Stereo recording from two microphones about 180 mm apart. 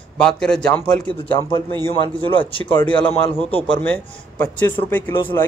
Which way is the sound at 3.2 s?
30° left (ahead or behind).